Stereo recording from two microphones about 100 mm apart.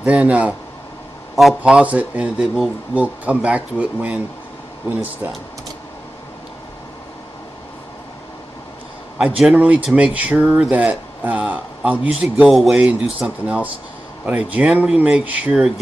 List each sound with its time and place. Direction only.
0.0 s speech: 15° right (ahead or behind)
1.3 s a man's voice: centre (ahead or behind)
1.6 s speech: 15° right (ahead or behind)
5.2 s speech: 20° right (ahead or behind)
9.2 s speech: 10° right (ahead or behind)